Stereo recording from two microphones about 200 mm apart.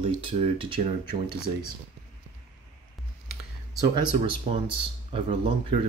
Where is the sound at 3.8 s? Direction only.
25° right (ahead or behind).